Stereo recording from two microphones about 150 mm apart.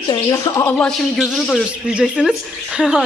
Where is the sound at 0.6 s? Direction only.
10° left (ahead or behind).